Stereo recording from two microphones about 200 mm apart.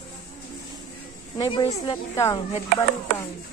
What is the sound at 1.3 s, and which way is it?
A woman's voice, 25° left (ahead or behind).